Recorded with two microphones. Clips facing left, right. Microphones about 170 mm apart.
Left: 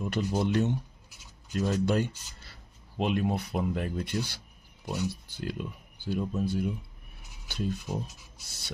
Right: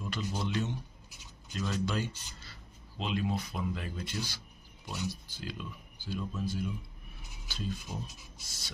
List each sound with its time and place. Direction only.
0.0 s speech: 55° left (ahead or behind)